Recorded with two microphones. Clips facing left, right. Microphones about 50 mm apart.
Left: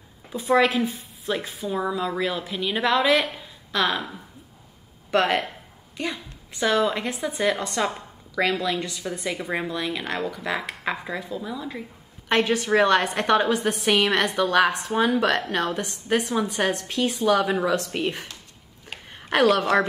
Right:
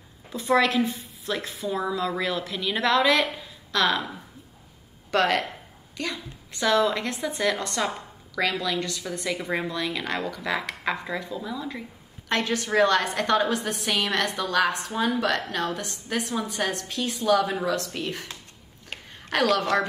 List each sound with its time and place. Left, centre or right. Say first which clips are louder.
0.3 s a woman's voice: left 2 dB; centre
5.1 s a woman's voice: left 1 dB; left
6.6 s a woman's voice: even; centre
7.6 s a woman's voice: left 2 dB; left; by 11.8 s centre
12.3 s a woman's voice: left 5 dB; left
14.1 s a woman's voice: left 3 dB; centre
14.4 s speech: left 5 dB; left
15.1 s a woman's voice: left 3 dB; left
19.0 s a sound: left 5 dB; left
19.6 s a woman's voice: left 3 dB; left